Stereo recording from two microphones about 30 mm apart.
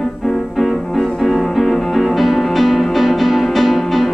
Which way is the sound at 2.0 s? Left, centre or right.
Centre.